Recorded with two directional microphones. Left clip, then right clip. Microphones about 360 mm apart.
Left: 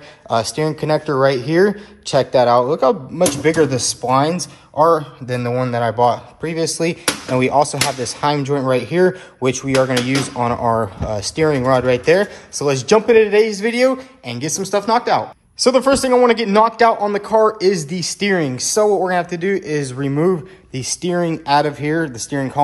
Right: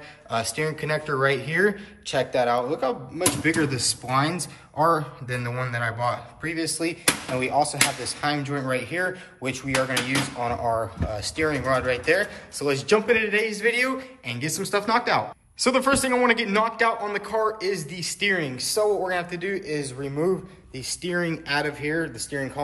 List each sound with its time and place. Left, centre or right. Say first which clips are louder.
0.3 s speech: left 8 dB; centre